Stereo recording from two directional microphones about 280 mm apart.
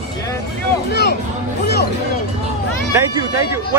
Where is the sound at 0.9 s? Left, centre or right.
Left.